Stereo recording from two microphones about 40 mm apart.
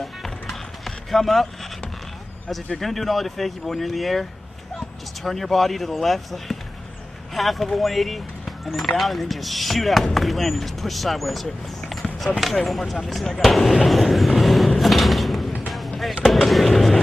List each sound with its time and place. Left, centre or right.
0.0 s music: centre
2.8 s speech: centre
11.9 s basketball bounce: centre
12.6 s speech: centre
13.8 s vehicle: centre
14.8 s sliding door: centre
16.3 s speech: centre